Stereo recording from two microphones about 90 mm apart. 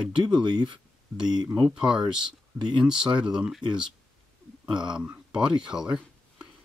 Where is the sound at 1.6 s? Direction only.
5° right (ahead or behind).